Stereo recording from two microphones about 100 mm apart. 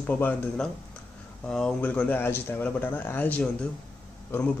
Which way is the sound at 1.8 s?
15° left (ahead or behind).